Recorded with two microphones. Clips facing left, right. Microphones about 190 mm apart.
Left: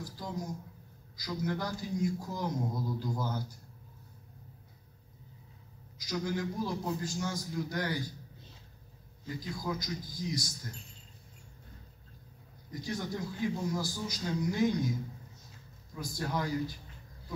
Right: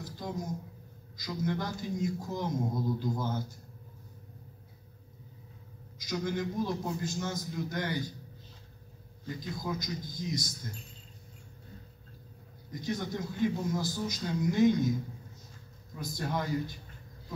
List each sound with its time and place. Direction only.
0.0 s a sound: 20° right (ahead or behind)
1.1 s a man's voice: 20° right (ahead or behind)
5.9 s a man's voice: 20° right (ahead or behind)
9.4 s a man's voice: 20° right (ahead or behind)
12.8 s a man's voice: 20° right (ahead or behind)
16.0 s a man's voice: 20° right (ahead or behind)